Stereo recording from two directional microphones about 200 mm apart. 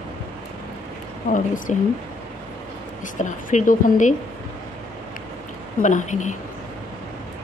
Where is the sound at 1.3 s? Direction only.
40° left (ahead or behind).